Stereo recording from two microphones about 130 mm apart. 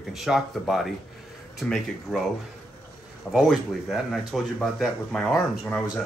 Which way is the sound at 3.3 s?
Centre (ahead or behind).